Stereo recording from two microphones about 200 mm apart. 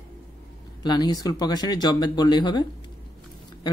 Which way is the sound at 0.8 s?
20° left (ahead or behind).